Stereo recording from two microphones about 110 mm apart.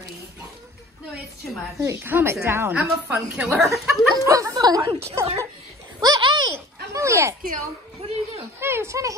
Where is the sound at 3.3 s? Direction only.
10° right (ahead or behind).